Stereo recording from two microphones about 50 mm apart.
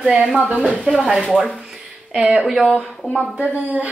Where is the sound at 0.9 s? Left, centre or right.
Right.